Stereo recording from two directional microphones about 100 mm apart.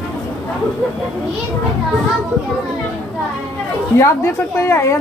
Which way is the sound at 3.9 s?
30° left (ahead or behind).